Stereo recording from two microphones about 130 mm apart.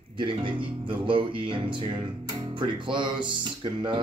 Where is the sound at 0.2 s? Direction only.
40° right (ahead or behind).